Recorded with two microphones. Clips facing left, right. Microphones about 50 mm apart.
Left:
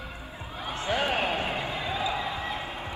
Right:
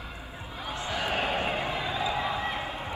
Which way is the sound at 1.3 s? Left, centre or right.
Right.